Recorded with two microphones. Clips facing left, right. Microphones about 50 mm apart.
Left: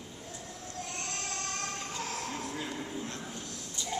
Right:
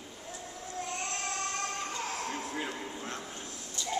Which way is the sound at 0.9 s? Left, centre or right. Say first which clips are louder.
Right 3 dB; centre.